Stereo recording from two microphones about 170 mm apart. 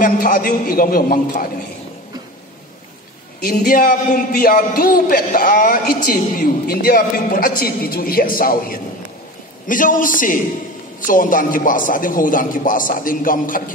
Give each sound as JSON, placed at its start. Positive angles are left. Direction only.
{"t": 0.0, "sound": "a man's voice", "side_deg": 55}
{"t": 3.4, "sound": "a man's voice", "side_deg": 60}